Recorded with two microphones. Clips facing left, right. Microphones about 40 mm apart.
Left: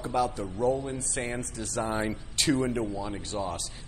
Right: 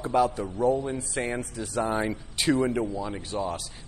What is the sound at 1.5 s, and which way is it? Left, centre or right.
Speech, centre.